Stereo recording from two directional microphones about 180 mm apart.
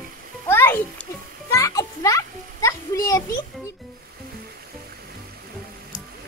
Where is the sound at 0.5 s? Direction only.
15° left (ahead or behind).